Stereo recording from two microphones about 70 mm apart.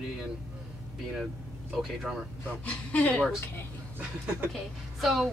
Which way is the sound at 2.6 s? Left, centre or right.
Left.